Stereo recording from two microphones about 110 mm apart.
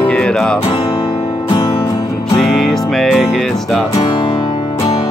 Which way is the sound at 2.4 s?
Centre (ahead or behind).